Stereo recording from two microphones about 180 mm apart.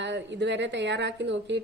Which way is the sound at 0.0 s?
75° right (ahead or behind).